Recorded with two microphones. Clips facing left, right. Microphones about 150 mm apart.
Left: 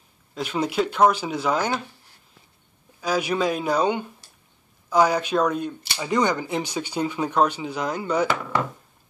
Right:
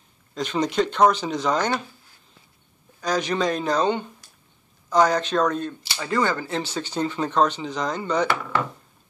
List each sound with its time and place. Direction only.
0.3 s speech: 5° left (ahead or behind)
3.0 s speech: 10° left (ahead or behind)